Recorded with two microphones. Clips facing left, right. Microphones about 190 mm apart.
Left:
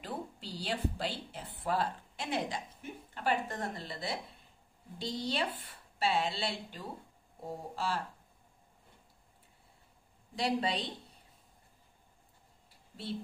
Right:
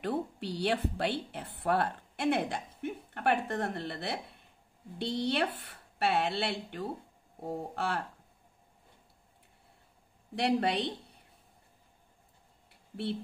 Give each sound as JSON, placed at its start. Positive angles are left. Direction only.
{"t": 0.0, "sound": "a woman's voice", "side_deg": -65}
{"t": 10.3, "sound": "a woman's voice", "side_deg": -60}